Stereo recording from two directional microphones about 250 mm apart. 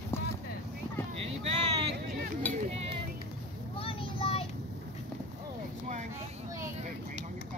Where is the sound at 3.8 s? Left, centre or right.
Left.